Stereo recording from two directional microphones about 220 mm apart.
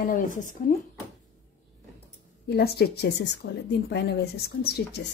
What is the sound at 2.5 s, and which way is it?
A woman's voice, 45° left (ahead or behind).